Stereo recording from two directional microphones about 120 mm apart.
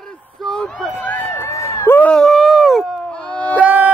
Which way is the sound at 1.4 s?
25° left (ahead or behind).